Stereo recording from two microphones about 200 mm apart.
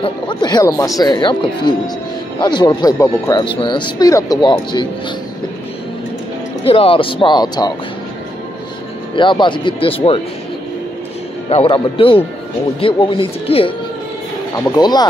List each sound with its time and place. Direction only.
0.0 s speech: 25° left (ahead or behind)
6.6 s speech: 30° left (ahead or behind)
9.1 s speech: 25° left (ahead or behind)
11.4 s speech: 30° left (ahead or behind)
14.8 s speech: 20° left (ahead or behind)